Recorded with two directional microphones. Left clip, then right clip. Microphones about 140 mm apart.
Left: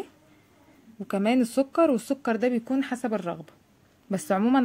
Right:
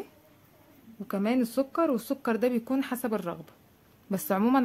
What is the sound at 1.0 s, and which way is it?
A woman's voice, 20° left (ahead or behind).